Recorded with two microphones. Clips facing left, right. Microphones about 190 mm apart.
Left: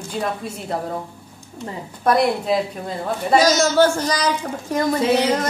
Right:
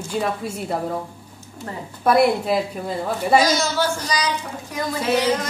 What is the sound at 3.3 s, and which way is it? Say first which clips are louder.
A child's voice: left 5 dB; 45° left (ahead or behind).